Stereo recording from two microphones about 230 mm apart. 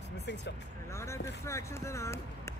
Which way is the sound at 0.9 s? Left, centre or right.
Centre.